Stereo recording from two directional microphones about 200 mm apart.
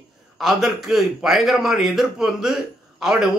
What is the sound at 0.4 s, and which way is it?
A man's voice, centre (ahead or behind).